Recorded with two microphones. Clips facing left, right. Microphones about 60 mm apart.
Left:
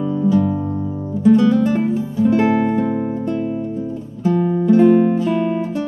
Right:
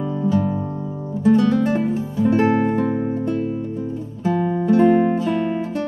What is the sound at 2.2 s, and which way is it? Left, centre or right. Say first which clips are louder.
Music: left 1 dB; right.